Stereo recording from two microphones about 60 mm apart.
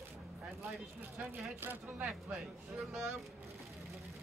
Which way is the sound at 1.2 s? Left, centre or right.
Right.